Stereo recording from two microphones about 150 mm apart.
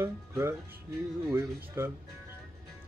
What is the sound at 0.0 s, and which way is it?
Speech, 15° right (ahead or behind).